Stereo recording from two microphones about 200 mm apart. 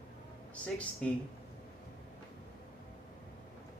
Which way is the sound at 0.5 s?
5° left (ahead or behind).